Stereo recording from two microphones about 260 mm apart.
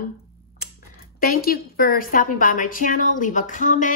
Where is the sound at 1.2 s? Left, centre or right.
Left.